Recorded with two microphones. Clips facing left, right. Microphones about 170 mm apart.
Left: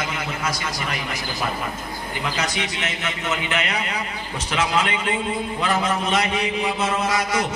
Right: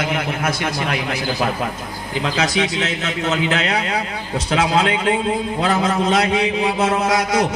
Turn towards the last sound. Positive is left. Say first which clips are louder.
# right 5 dB
turn(degrees=-75)  # may be behind; listen again after turning